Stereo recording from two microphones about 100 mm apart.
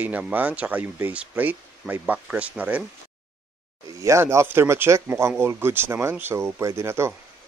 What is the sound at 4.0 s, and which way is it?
Speech, 30° right (ahead or behind).